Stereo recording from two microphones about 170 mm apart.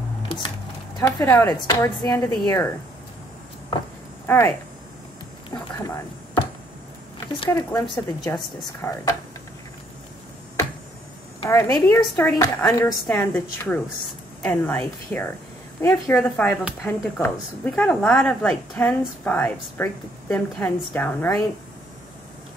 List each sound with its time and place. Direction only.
0.3 s music: 30° left (ahead or behind)
0.9 s a woman's voice: 15° left (ahead or behind)
4.3 s speech: 15° left (ahead or behind)
7.4 s a woman's voice: 20° left (ahead or behind)
8.8 s a woman's voice: 15° left (ahead or behind)
11.4 s a woman's voice: 15° left (ahead or behind)